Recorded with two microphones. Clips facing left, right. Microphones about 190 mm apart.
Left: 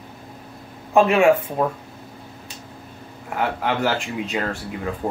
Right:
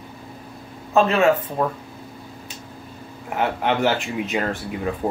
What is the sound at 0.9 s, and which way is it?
Speech, 15° left (ahead or behind).